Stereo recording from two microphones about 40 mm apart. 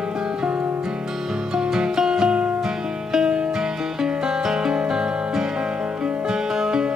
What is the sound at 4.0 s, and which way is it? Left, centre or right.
Music, centre.